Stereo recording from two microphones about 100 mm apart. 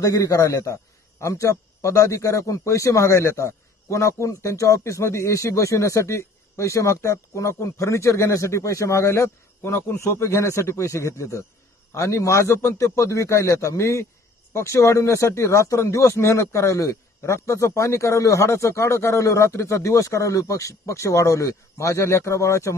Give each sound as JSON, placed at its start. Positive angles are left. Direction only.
{"t": 0.0, "sound": "a man's voice", "side_deg": 35}